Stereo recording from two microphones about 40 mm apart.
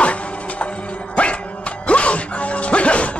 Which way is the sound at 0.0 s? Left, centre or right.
Left.